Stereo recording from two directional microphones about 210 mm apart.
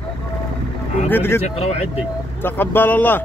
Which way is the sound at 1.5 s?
30° left (ahead or behind).